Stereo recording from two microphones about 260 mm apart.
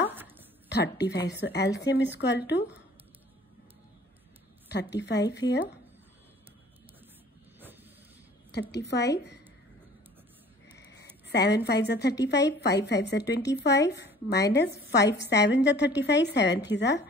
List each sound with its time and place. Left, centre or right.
0.1 s a sound: centre
0.7 s a woman's voice: left
4.6 s a woman's voice: left
8.5 s a woman's voice: left
10.8 s a sound: left
11.2 s a woman's voice: left